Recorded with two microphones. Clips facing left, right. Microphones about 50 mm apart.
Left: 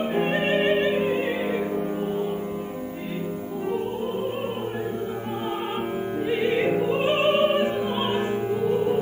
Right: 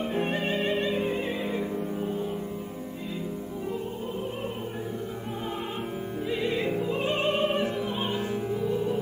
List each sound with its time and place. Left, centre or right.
0.1 s music: left
6.2 s music: left